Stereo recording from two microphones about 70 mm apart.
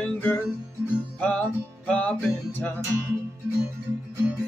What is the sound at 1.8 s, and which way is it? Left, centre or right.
Music, centre.